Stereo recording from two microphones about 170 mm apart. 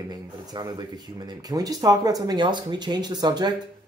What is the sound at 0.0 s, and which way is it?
Speech, 25° right (ahead or behind).